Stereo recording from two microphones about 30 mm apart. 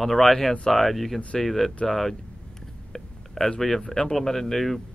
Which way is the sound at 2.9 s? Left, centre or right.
Centre.